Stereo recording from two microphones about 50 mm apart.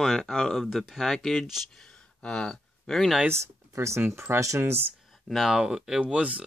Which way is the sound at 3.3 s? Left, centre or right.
Right.